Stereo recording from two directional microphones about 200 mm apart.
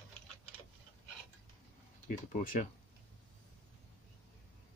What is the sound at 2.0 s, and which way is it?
Speech, 40° left (ahead or behind).